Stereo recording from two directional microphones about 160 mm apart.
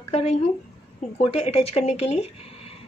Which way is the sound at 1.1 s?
40° left (ahead or behind).